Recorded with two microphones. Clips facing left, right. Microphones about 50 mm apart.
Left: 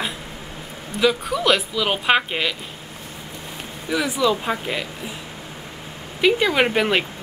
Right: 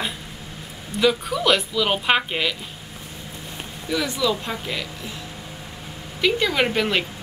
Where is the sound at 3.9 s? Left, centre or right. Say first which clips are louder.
Left 3 dB; centre.